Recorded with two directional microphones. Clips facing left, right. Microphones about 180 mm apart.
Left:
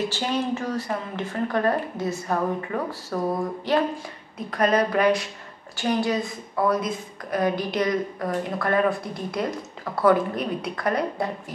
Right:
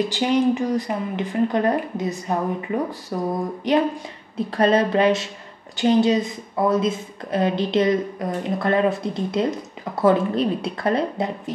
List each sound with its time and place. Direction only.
0.1 s a woman's voice: 15° right (ahead or behind)
4.5 s a woman's voice: 30° right (ahead or behind)